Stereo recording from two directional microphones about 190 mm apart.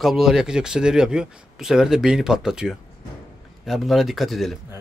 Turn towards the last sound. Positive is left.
turn(degrees=0)  # may be behind; listen again after turning